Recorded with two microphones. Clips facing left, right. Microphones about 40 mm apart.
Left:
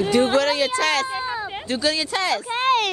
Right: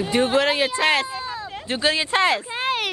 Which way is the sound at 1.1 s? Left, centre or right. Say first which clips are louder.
Left 4 dB; centre.